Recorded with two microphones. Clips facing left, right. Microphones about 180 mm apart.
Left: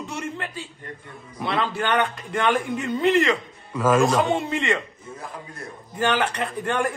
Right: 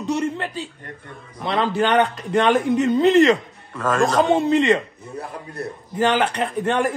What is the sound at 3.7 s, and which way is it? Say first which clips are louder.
Speech: left 1 dB; centre (ahead or behind).